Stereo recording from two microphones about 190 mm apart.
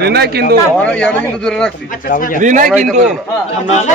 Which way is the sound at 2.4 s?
40° right (ahead or behind).